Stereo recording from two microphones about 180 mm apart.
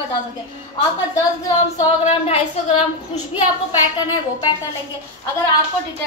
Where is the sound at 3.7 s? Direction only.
25° left (ahead or behind).